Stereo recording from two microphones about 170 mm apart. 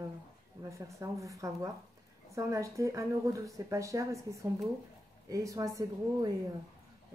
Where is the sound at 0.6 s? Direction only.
15° right (ahead or behind).